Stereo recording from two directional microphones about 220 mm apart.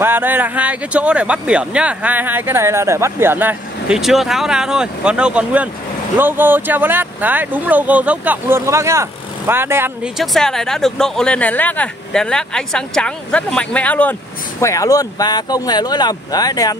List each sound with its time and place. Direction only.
0.0 s speech: 10° right (ahead or behind); by 16.7 s 15° left (ahead or behind)